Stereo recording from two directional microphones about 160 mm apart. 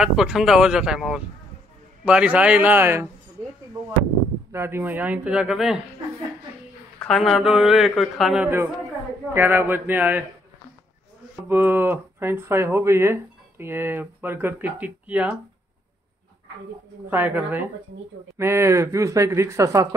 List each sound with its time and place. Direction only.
0.0 s speech: 5° right (ahead or behind)
4.5 s speech: 15° right (ahead or behind)
7.0 s speech: centre (ahead or behind)
9.3 s speech: 15° right (ahead or behind)
11.4 s speech: 10° right (ahead or behind)
17.1 s speech: 10° right (ahead or behind)